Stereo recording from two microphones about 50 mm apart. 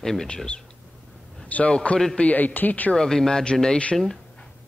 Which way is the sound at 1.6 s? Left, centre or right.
Centre.